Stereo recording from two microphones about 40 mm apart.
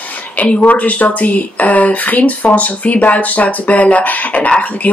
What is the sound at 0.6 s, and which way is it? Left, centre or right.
Speech, left.